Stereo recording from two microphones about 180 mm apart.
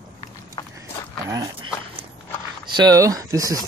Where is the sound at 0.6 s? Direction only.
20° left (ahead or behind).